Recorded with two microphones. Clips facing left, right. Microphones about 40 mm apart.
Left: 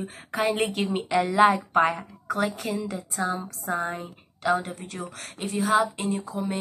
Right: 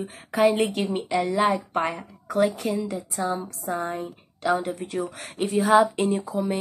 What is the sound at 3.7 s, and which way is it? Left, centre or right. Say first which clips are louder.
Speech: even; centre.